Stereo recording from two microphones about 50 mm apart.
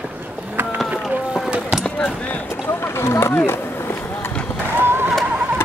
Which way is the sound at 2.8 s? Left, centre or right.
Left.